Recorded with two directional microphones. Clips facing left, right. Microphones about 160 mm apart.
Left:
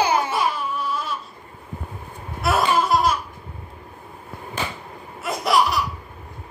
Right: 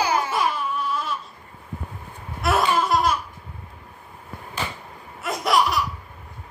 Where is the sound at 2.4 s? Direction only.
5° left (ahead or behind).